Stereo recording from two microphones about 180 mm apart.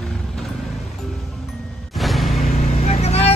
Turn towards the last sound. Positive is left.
turn(degrees=35)  # may be behind; listen again after turning